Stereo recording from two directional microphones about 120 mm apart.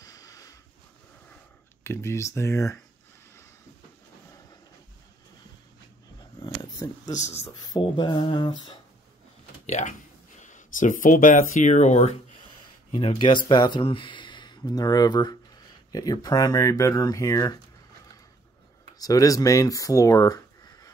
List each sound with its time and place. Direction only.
0.0 s a sound: 30° left (ahead or behind)
1.8 s speech: 20° left (ahead or behind)
6.4 s dog: 35° left (ahead or behind)
7.1 s a man's voice: 75° left (ahead or behind)
7.8 s mantra: 40° left (ahead or behind)
9.7 s speech: 80° left
10.4 s speech: 90° left
12.9 s speech: 50° left (ahead or behind); by 17.6 s 30° left (ahead or behind)
18.9 s speech: 30° left (ahead or behind)